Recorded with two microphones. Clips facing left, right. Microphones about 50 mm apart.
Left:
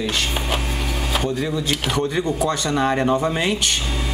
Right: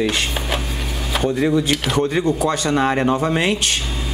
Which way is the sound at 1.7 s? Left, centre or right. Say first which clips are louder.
Right 3 dB; centre.